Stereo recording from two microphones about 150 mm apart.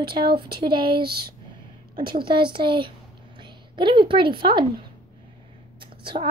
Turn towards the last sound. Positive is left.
turn(degrees=-35)  # may be behind; listen again after turning